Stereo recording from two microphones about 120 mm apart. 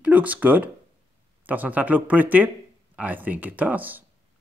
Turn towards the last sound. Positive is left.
turn(degrees=-15)  # may be behind; listen again after turning